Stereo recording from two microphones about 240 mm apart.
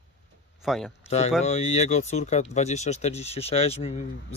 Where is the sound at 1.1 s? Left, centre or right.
Left.